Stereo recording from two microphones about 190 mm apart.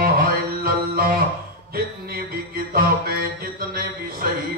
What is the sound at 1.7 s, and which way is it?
Mantra, 50° right (ahead or behind).